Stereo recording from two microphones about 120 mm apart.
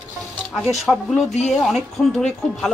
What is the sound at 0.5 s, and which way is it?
Speech, centre (ahead or behind).